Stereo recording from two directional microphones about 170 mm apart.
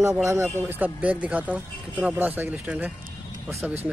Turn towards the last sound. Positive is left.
turn(degrees=-10)  # may be behind; listen again after turning